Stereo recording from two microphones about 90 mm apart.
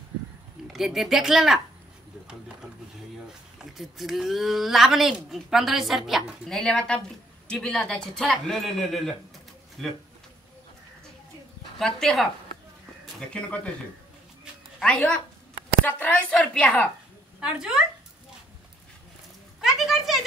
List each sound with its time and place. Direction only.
0.7 s a woman's voice: 5° right (ahead or behind)
2.2 s a sound: 10° right (ahead or behind)
3.5 s a woman's voice: 5° right (ahead or behind)
11.8 s a woman's voice: 5° left (ahead or behind)
14.8 s speech: 10° left (ahead or behind)
17.6 s speech: 10° right (ahead or behind)
19.6 s a sound: centre (ahead or behind)